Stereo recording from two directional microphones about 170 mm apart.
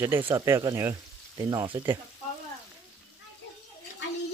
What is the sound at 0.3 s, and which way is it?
Speech, 15° right (ahead or behind).